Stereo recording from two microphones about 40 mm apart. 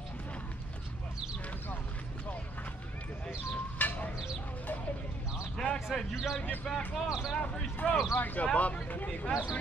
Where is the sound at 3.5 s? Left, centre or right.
Left.